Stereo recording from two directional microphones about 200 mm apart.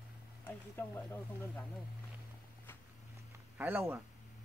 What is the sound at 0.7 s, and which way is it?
Speech, 10° left (ahead or behind).